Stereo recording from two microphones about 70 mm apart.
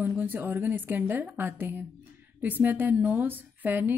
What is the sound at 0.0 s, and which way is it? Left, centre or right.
Speech, right.